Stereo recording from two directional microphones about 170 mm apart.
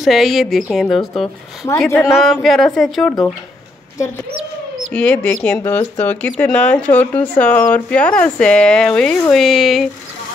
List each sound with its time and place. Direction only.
0.0 s speech: centre (ahead or behind)
1.9 s speech: 15° left (ahead or behind)
2.1 s speech: centre (ahead or behind)
4.9 s speech: 10° left (ahead or behind)